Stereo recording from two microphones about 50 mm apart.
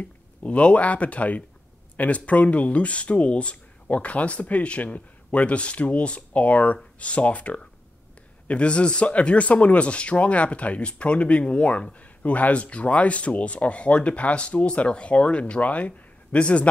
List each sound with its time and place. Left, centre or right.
0.0 s speech: left